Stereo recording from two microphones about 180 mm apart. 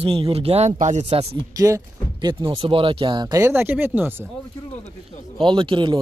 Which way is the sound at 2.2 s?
20° right (ahead or behind).